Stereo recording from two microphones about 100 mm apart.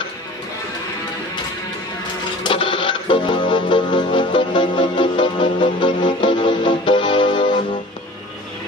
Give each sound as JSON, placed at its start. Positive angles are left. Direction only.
{"t": 2.4, "sound": "music", "side_deg": 60}